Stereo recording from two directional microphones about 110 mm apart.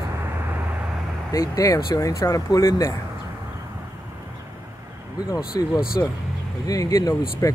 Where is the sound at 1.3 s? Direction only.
30° left (ahead or behind).